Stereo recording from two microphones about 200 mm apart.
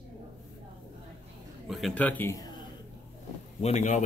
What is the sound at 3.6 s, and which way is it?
Speech, 35° left (ahead or behind).